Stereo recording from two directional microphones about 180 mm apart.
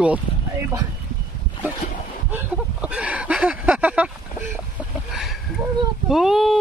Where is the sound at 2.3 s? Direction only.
10° right (ahead or behind).